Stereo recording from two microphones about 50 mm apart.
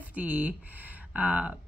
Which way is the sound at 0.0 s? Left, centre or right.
Right.